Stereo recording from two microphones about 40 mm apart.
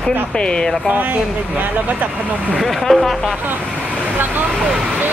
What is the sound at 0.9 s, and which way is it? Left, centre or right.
Speech, right.